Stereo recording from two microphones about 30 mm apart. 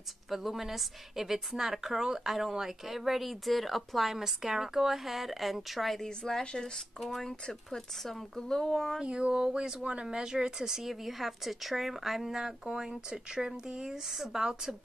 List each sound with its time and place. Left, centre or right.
0.3 s a woman's voice: centre
4.2 s speech: centre
6.4 s speech: left
7.0 s speech: centre
8.4 s speech: left
8.6 s speech: centre
9.0 s a sound: right
10.1 s a woman's voice: right; by 12.3 s centre
12.3 s speech: centre
13.8 s a woman's voice: centre